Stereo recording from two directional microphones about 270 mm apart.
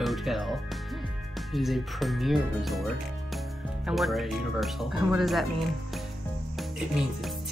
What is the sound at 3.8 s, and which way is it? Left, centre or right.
Speech, centre.